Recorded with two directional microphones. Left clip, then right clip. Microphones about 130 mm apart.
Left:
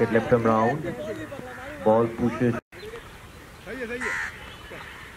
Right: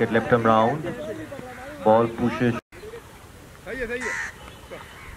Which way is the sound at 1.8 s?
50° right (ahead or behind).